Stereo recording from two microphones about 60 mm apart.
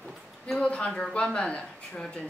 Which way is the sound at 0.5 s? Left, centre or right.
Left.